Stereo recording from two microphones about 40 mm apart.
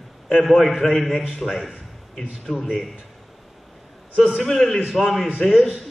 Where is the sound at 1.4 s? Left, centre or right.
Left.